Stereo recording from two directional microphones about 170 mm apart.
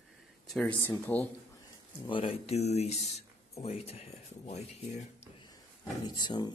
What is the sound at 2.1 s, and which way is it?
Speech, 35° left (ahead or behind).